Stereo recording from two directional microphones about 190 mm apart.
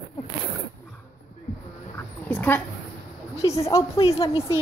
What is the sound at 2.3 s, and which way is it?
Dog, 10° left (ahead or behind).